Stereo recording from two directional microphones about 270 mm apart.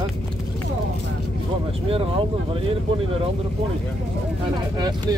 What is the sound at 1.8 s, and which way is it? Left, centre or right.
Speech, right.